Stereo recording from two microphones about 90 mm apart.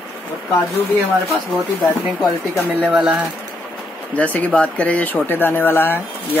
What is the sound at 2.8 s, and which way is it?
Speech, 10° right (ahead or behind).